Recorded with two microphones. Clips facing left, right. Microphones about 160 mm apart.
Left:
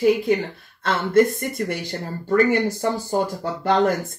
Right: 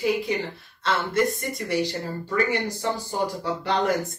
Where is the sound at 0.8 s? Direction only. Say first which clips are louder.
Left 6 dB; 50° left (ahead or behind).